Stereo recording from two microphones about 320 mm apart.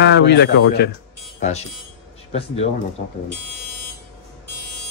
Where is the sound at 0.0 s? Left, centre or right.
Left.